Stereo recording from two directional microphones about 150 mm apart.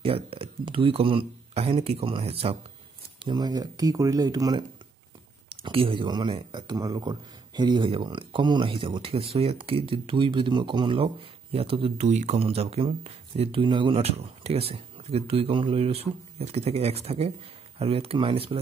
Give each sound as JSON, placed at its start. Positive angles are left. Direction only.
{"t": 0.0, "sound": "speech", "side_deg": -40}
{"t": 3.2, "sound": "speech", "side_deg": -30}
{"t": 5.5, "sound": "speech", "side_deg": -40}